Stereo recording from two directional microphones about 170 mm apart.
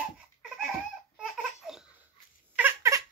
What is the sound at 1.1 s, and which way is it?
Laughter, 5° right (ahead or behind).